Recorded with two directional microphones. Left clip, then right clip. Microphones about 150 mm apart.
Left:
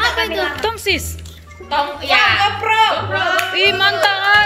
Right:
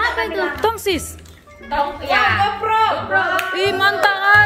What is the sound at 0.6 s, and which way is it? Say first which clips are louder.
Speech: right 2 dB; 40° right (ahead or behind).